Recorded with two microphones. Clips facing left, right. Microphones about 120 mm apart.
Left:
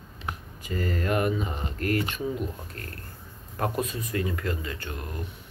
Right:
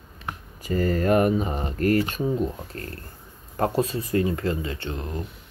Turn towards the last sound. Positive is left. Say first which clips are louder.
# right 5 dB
turn(degrees=-25)  # may be behind; listen again after turning